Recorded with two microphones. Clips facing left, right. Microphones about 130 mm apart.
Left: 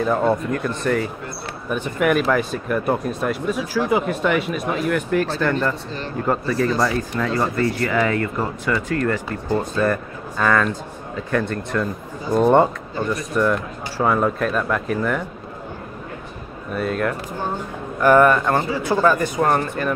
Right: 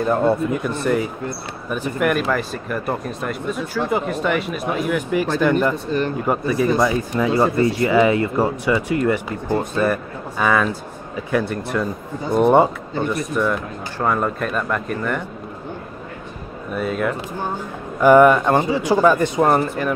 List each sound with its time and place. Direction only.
0.0 s speech: centre (ahead or behind)
13.3 s speech: centre (ahead or behind)
16.7 s speech: centre (ahead or behind)
18.0 s speech: 15° right (ahead or behind)